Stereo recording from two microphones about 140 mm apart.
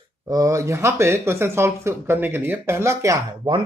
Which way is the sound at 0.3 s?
25° right (ahead or behind).